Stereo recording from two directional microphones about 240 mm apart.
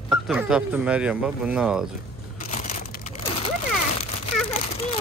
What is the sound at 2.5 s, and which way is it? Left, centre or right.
Crushing, left.